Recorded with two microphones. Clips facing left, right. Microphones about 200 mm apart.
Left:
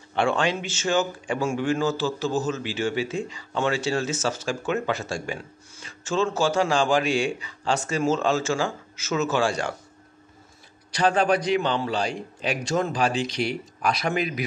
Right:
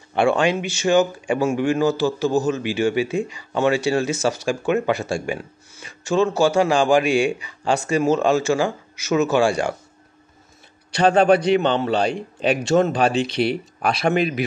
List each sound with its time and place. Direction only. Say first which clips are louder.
0.1 s a man's voice: right 5 dB; 10° right (ahead or behind)
11.4 s speech: right 5 dB; 65° right (ahead or behind)
12.6 s speech: right 7 dB; 25° right (ahead or behind)
12.9 s speech: right 5 dB; 65° right (ahead or behind)